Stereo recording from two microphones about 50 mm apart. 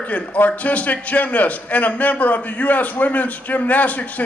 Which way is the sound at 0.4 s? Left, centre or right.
Left.